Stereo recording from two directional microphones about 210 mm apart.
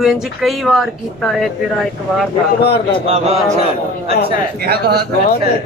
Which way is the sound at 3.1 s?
30° right (ahead or behind).